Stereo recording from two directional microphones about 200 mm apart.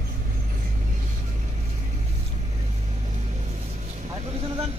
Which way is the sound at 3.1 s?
35° right (ahead or behind).